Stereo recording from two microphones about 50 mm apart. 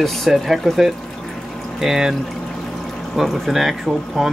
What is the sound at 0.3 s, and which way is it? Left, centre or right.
Speech, centre.